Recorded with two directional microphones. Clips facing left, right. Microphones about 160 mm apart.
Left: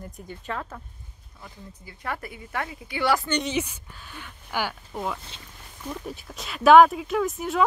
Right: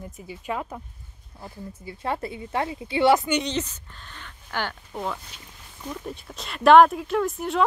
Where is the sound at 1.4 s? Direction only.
25° right (ahead or behind).